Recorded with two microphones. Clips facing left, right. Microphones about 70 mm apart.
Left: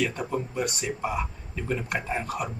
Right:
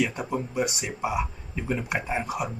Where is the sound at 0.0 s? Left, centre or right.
Centre.